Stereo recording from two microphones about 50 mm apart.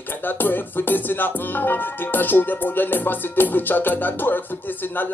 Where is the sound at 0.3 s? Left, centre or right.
Left.